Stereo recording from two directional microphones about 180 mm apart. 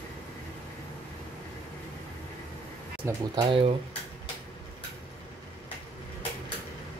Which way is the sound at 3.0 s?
25° right (ahead or behind).